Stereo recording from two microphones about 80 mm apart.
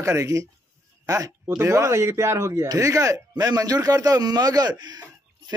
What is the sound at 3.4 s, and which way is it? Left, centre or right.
Speech, right.